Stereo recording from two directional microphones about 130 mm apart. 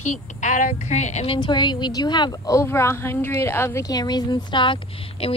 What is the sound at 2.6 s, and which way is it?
A woman's voice, 20° left (ahead or behind).